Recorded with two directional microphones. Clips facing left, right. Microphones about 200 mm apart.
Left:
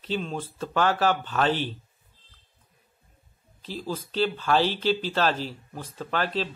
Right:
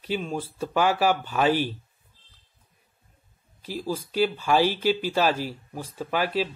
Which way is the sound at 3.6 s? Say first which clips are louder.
Right 3 dB; 10° right (ahead or behind).